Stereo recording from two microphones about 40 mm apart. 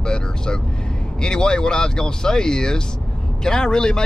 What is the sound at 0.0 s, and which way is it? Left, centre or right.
Vehicle, left.